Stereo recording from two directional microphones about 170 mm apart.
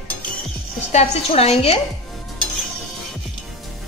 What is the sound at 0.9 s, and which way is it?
Speech, 40° left (ahead or behind).